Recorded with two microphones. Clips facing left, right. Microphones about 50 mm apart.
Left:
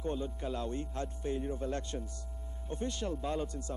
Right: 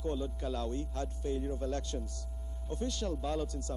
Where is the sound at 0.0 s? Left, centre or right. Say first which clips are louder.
Even; left.